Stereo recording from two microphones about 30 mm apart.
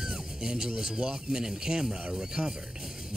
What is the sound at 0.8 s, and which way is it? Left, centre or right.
A man's voice, right.